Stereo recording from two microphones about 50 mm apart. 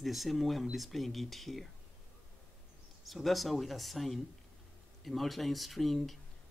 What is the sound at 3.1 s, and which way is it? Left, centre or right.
Speech, centre.